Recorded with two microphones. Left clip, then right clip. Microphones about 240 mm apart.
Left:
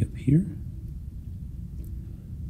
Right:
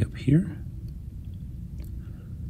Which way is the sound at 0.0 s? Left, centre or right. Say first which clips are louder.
Right 1 dB; centre.